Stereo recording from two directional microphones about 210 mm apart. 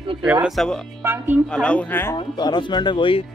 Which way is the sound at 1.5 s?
5° left (ahead or behind).